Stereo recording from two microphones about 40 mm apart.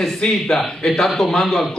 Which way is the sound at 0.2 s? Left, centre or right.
Centre.